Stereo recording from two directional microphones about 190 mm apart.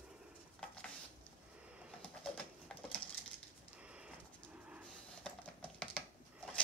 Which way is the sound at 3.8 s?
5° right (ahead or behind).